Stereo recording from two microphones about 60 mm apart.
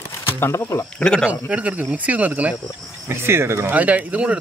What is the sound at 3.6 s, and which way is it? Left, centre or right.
Speech, right.